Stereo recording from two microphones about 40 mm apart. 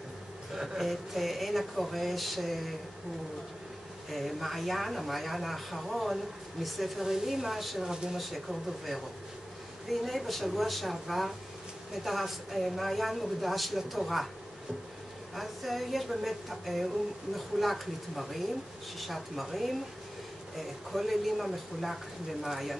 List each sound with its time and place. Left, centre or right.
0.7 s a woman's voice: centre
4.1 s a woman's voice: centre
7.8 s speech: centre
8.2 s a woman's voice: centre
15.3 s a woman's voice: centre